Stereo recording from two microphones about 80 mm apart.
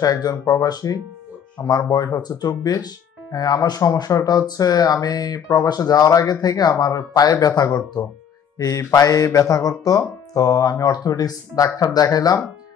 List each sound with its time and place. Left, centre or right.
0.0 s speech: left